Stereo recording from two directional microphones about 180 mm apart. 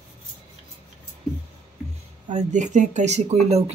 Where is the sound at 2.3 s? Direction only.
40° right (ahead or behind).